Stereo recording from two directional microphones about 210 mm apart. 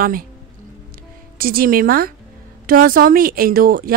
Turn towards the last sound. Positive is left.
turn(degrees=-45)  # may be behind; listen again after turning